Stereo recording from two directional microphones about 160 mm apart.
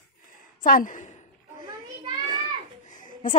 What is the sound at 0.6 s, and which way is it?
Speech, 55° left (ahead or behind).